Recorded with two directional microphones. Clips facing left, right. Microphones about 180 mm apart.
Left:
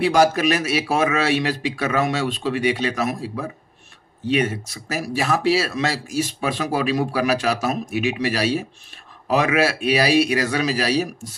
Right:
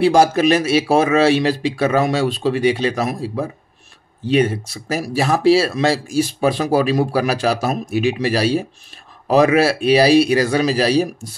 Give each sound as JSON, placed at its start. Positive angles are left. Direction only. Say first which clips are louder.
{"t": 0.0, "sound": "speech", "louder": "right 4 dB", "side_deg": -30}